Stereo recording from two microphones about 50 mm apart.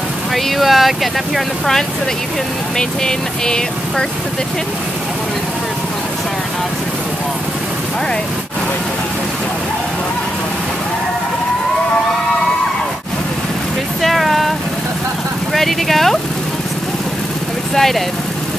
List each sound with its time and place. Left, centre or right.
0.3 s speech: centre
2.8 s vehicle: centre
14.0 s vehicle: centre
15.5 s speech: centre
17.7 s speech: centre